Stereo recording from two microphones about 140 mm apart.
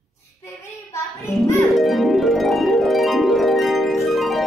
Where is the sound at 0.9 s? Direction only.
20° left (ahead or behind).